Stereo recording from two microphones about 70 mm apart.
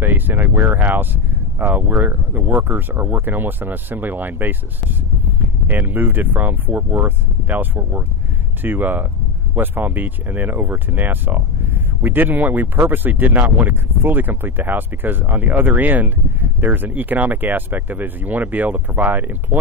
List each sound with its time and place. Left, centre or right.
0.0 s speech: right
5.7 s speech: right